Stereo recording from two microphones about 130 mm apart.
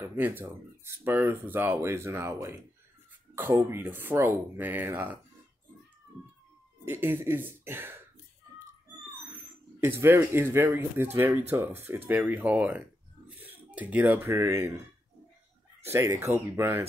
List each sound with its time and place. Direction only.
0.0 s speech: 15° right (ahead or behind)
6.8 s speech: 15° right (ahead or behind)
9.8 s speech: 20° right (ahead or behind)
15.8 s speech: 20° right (ahead or behind)